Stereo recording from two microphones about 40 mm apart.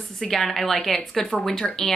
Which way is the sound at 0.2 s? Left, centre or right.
Centre.